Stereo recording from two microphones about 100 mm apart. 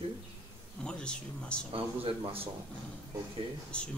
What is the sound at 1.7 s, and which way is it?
Speech, 65° right (ahead or behind).